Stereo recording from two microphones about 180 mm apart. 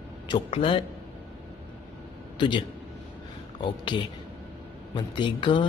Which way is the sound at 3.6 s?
25° left (ahead or behind).